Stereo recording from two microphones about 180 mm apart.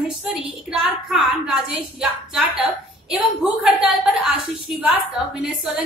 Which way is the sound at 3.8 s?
5° right (ahead or behind).